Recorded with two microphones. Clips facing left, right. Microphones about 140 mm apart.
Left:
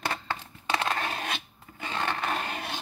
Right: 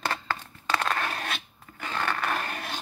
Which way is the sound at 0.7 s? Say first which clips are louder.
Right 1 dB; 20° left (ahead or behind).